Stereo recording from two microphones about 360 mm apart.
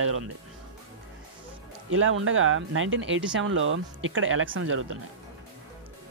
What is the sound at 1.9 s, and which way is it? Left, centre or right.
Speech, right.